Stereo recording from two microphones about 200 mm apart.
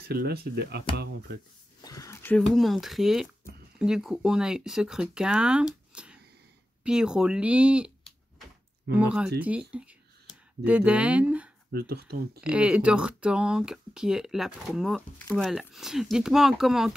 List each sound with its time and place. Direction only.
0.1 s speech: 50° right (ahead or behind)
1.8 s speech: 15° left (ahead or behind); by 5.7 s 5° right (ahead or behind)
5.9 s a sound: 5° right (ahead or behind)
6.8 s speech: 5° right (ahead or behind)
8.9 s speech: 5° right (ahead or behind)
11.7 s speech: 50° right (ahead or behind)
12.4 s speech: 5° right (ahead or behind)